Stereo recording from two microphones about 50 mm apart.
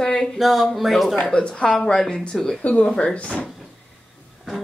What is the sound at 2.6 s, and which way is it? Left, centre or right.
Speech, left.